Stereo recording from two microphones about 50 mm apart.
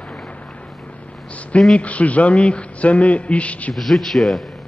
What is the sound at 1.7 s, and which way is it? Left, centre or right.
A man's voice, left.